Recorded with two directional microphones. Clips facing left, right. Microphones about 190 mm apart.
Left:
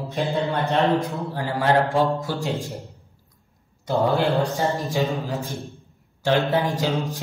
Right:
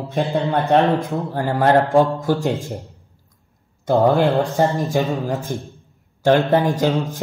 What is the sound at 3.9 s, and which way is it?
A man's voice, 50° right (ahead or behind).